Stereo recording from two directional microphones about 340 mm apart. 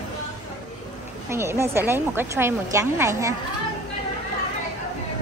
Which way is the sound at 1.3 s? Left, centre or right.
Centre.